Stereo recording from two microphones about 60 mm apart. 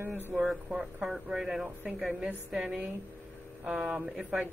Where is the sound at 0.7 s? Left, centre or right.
Centre.